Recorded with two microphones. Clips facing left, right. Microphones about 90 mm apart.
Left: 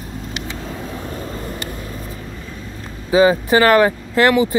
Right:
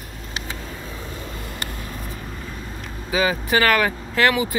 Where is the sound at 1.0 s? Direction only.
40° left (ahead or behind).